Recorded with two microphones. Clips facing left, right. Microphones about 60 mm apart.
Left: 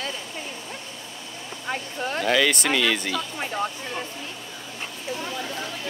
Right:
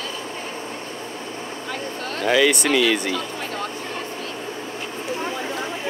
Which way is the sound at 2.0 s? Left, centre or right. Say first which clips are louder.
Left 3 dB; centre.